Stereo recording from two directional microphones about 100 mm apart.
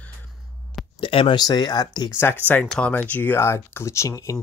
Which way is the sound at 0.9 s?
60° left (ahead or behind).